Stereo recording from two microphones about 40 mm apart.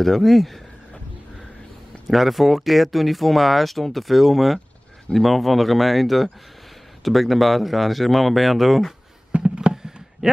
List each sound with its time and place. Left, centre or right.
0.0 s speech: centre
2.0 s speech: centre
9.4 s a sound: centre